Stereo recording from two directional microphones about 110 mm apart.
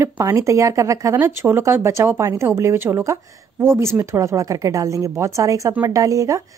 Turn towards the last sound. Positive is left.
turn(degrees=-30)  # may be behind; listen again after turning